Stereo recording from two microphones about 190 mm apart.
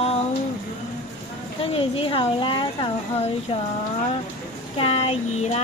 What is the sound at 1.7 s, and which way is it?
Speech, 30° left (ahead or behind).